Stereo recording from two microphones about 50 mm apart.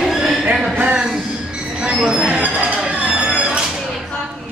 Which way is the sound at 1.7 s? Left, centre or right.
Centre.